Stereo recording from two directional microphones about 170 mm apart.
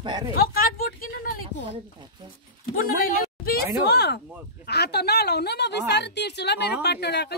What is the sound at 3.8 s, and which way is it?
A woman's voice, 75° left (ahead or behind).